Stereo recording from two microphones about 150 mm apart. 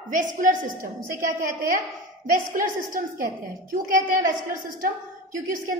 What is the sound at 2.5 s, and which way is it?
Speech, 65° right (ahead or behind).